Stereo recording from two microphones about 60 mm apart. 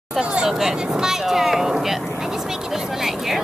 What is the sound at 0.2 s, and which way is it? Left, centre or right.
Speech, centre.